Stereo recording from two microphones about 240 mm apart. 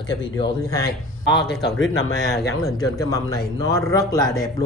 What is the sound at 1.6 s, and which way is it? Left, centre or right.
Speech, left.